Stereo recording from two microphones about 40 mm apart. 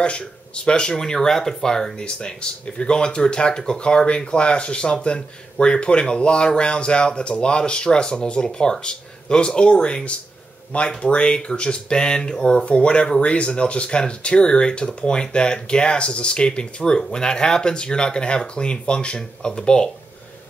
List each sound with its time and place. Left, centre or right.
0.0 s speech: left